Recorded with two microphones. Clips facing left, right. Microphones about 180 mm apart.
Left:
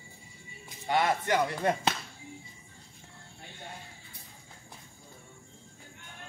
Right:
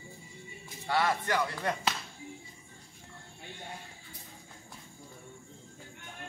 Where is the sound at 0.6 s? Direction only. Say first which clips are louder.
Left 2 dB; 15° left (ahead or behind).